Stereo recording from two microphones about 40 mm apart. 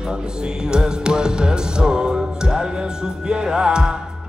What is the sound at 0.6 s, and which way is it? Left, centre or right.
Music, centre.